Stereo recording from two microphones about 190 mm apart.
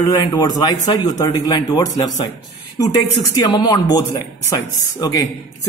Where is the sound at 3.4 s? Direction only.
20° left (ahead or behind).